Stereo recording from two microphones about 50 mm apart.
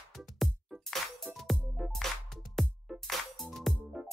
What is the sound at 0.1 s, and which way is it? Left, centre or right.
Music, centre.